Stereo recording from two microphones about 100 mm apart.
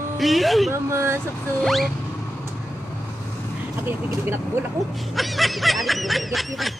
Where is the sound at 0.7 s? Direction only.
25° right (ahead or behind).